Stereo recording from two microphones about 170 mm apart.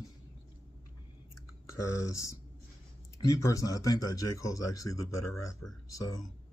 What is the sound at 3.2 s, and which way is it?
Speech, 20° left (ahead or behind).